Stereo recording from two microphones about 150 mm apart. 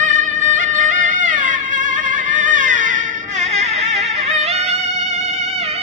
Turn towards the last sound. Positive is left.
turn(degrees=-45)  # may be behind; listen again after turning